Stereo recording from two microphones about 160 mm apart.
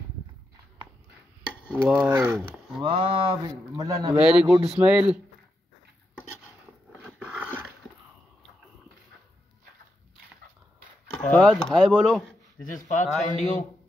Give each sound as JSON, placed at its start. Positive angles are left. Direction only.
{"t": 1.7, "sound": "dishes", "side_deg": -5}
{"t": 2.8, "sound": "speech", "side_deg": -30}
{"t": 4.1, "sound": "dishes", "side_deg": -5}
{"t": 7.2, "sound": "dog", "side_deg": -5}
{"t": 11.2, "sound": "speech", "side_deg": 5}
{"t": 12.6, "sound": "speech", "side_deg": 55}